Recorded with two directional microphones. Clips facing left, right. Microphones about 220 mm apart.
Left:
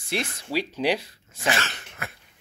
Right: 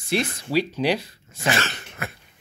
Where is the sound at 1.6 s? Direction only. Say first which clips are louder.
Right 4 dB; 35° right (ahead or behind).